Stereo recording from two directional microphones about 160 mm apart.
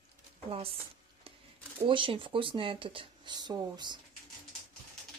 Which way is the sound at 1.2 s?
35° right (ahead or behind).